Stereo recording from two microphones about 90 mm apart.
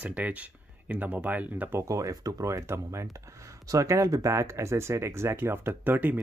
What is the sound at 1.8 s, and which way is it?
Speech, 40° right (ahead or behind).